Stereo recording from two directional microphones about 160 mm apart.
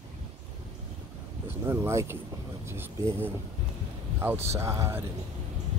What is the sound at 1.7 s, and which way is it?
Speech, 15° right (ahead or behind).